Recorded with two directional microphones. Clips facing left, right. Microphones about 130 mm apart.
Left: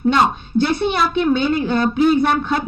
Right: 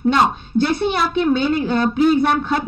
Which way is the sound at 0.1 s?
40° right (ahead or behind).